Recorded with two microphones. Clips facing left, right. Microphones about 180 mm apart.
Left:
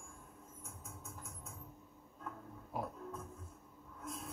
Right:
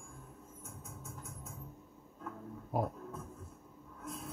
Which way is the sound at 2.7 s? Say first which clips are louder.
Right 7 dB; 45° right (ahead or behind).